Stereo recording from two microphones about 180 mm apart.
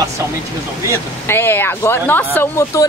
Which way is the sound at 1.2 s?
15° left (ahead or behind).